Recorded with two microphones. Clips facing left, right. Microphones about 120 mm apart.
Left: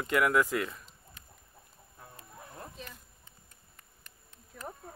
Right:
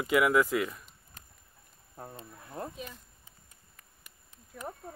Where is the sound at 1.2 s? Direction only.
40° right (ahead or behind).